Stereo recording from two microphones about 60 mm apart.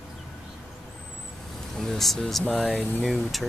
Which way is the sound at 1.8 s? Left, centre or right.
Centre.